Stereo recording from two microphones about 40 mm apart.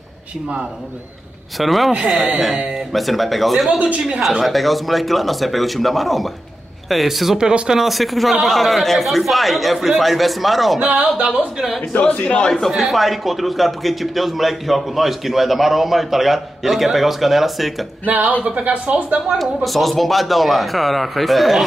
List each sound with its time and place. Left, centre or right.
1.6 s a man's voice: centre
7.3 s speech: centre
7.8 s a man's voice: centre
11.1 s speech: right
12.0 s a man's voice: left
12.4 s a man's voice: centre
18.0 s speech: right
18.4 s speech: right
19.3 s a man's voice: centre